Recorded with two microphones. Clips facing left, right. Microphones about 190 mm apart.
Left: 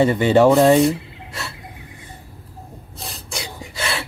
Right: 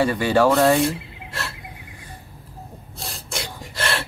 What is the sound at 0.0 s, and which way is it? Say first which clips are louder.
Speech: left 4 dB; 20° left (ahead or behind).